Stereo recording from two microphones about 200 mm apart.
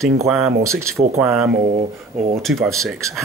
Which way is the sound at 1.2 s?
Centre (ahead or behind).